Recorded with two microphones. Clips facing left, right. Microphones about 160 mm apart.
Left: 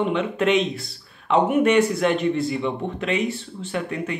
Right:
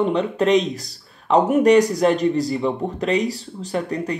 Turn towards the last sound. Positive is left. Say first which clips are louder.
# right 3 dB
turn(degrees=-40)  # may be behind; listen again after turning